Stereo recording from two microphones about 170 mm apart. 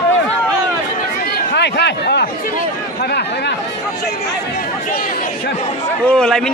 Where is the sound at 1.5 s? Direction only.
85° left.